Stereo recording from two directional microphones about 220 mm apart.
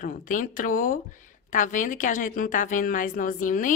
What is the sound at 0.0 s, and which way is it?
A woman's voice, 35° left (ahead or behind).